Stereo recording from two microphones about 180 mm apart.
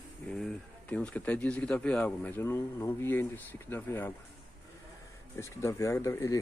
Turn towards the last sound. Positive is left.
turn(degrees=15)  # may be behind; listen again after turning